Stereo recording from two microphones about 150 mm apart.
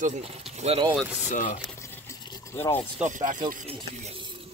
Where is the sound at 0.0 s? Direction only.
45° right (ahead or behind).